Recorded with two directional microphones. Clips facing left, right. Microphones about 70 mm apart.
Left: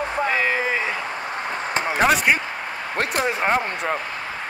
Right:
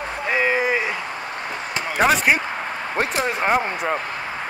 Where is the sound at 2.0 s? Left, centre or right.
Centre.